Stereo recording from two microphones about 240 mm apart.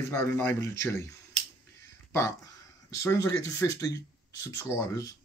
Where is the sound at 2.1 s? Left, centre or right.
Centre.